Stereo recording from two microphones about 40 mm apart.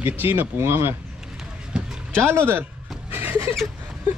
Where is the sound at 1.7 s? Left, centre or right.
Right.